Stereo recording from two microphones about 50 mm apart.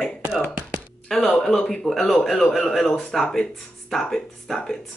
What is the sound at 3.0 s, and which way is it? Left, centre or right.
A woman's voice, centre.